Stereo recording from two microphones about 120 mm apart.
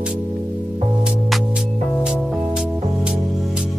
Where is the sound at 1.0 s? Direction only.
5° right (ahead or behind).